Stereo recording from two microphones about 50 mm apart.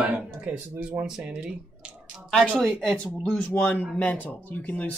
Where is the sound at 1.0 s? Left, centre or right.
Centre.